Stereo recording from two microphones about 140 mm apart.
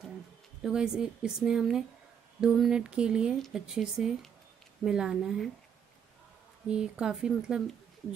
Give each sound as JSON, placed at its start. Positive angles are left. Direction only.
{"t": 0.6, "sound": "speech", "side_deg": -5}
{"t": 6.7, "sound": "speech", "side_deg": -5}